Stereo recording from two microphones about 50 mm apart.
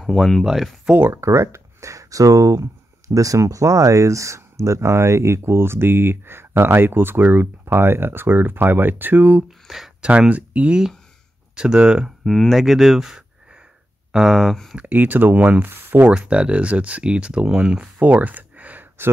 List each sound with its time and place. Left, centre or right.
0.0 s speech: centre
1.1 s speech: right
9.7 s speech: centre
10.0 s speech: right
11.5 s speech: centre
12.3 s speech: centre
14.9 s speech: right
15.3 s speech: right
15.6 s speech: right
16.1 s speech: right
17.9 s a sound: right